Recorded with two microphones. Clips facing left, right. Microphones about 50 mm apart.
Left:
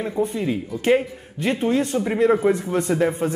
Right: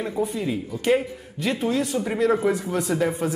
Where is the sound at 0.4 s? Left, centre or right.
Left.